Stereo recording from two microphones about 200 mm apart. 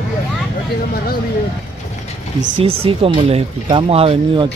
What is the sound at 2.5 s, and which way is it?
Speech, 30° right (ahead or behind).